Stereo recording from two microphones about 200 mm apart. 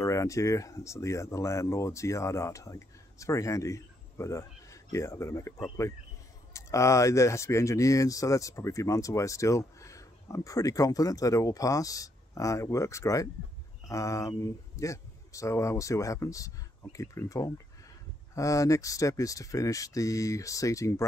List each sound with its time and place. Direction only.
0.0 s speech: 15° left (ahead or behind)